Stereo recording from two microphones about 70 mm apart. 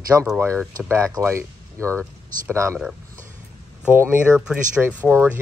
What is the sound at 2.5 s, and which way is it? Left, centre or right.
Speech, right.